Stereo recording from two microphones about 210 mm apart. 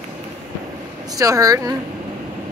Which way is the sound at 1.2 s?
15° right (ahead or behind).